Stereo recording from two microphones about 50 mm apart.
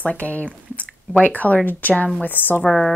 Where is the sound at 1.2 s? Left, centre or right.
Left.